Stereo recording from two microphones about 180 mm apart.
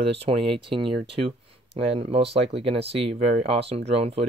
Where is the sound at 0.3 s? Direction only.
30° right (ahead or behind).